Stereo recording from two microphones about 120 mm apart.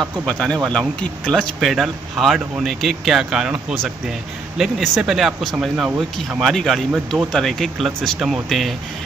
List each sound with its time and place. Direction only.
0.3 s speech: 10° left (ahead or behind)